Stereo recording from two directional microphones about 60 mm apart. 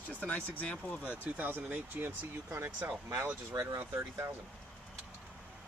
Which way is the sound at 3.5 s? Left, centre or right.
Right.